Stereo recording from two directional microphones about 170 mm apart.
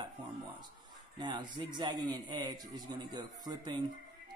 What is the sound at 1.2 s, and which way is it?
Speech, 25° right (ahead or behind).